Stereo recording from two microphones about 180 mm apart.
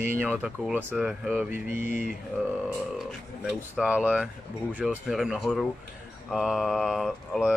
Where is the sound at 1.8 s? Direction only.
45° left (ahead or behind).